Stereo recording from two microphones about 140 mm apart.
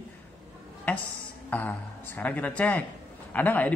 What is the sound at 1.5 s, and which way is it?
Speech, 10° left (ahead or behind).